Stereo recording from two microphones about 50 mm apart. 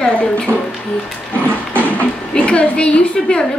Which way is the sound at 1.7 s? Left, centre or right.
Left.